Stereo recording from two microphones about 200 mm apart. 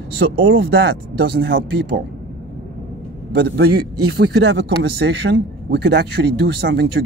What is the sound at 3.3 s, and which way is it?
A man's voice, 55° right (ahead or behind).